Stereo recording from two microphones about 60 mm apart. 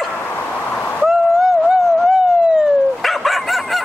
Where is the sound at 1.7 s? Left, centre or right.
Centre.